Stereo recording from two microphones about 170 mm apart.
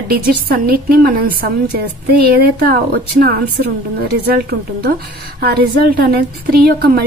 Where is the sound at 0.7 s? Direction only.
60° right (ahead or behind).